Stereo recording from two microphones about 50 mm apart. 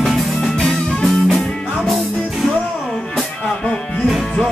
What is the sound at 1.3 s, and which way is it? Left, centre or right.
Music, centre.